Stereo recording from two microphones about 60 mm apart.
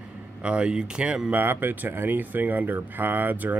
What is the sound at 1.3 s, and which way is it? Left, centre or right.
Speech, right.